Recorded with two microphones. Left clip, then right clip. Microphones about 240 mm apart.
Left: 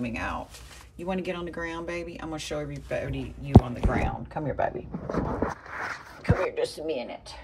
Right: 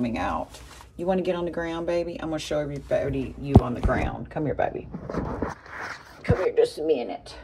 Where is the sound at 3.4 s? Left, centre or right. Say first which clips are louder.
Even; centre.